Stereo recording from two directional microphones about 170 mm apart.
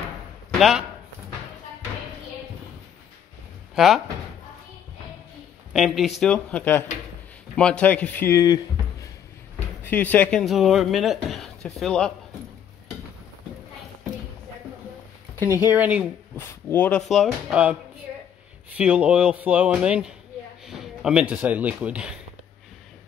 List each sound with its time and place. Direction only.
0.5 s speech: centre (ahead or behind)
3.7 s speech: centre (ahead or behind)
5.7 s a man's voice: centre (ahead or behind); by 8.5 s 20° left (ahead or behind)
9.8 s speech: 10° left (ahead or behind)
15.3 s speech: 15° left (ahead or behind)
15.6 s speech: 10° right (ahead or behind)
16.3 s speech: 10° left (ahead or behind)
17.1 s speech: centre (ahead or behind)